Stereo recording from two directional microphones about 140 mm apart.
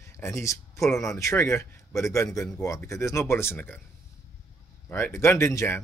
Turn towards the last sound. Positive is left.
turn(degrees=20)  # may be behind; listen again after turning